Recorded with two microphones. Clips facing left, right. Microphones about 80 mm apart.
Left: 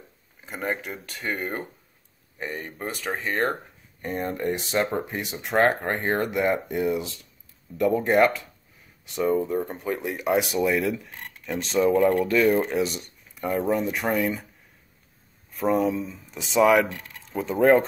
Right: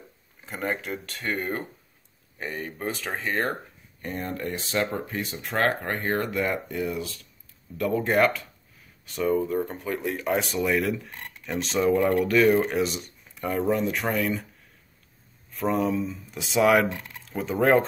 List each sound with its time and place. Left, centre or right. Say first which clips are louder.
0.5 s speech: even; centre
4.1 s speech: left 4 dB; left
7.8 s speech: left 3 dB; centre
9.7 s speech: left 1 dB; centre
15.5 s speech: left 2 dB; centre